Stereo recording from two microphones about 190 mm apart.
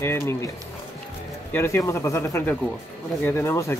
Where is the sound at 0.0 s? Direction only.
10° left (ahead or behind).